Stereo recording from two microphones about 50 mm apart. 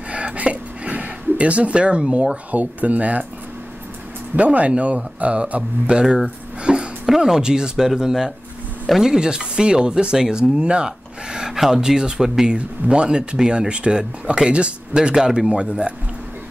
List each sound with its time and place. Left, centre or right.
0.1 s speech: right
4.4 s speech: right
6.0 s speech: centre
6.6 s a sound: centre
7.2 s speech: centre